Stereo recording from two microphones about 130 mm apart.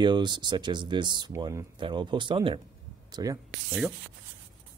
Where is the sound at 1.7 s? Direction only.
40° right (ahead or behind).